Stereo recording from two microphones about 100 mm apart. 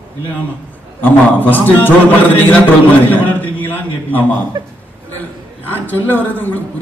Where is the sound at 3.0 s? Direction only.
20° left (ahead or behind).